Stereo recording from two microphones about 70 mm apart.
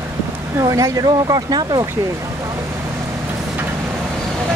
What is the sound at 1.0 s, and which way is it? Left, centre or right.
Speech, right.